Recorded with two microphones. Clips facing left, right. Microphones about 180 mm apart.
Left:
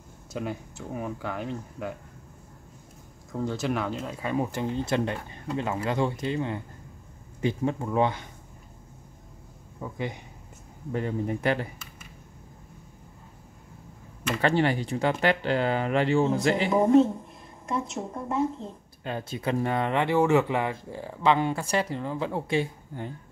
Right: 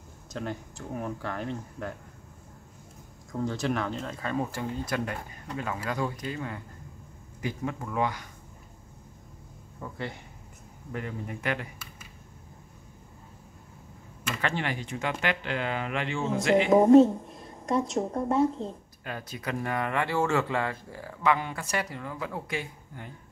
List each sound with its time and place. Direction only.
0.3 s speech: 5° left (ahead or behind)
3.3 s speech: centre (ahead or behind); by 8.3 s 25° left (ahead or behind)
9.8 s speech: 15° left (ahead or behind)
10.9 s speech: 30° left (ahead or behind)
14.2 s speech: 35° left (ahead or behind)
17.6 s a woman's voice: 35° right (ahead or behind)
19.0 s speech: 25° left (ahead or behind)